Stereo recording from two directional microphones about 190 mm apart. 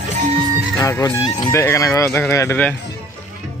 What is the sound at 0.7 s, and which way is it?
Speech, 15° left (ahead or behind).